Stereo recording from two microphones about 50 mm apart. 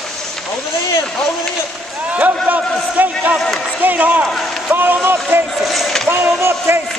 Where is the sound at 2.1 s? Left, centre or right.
Right.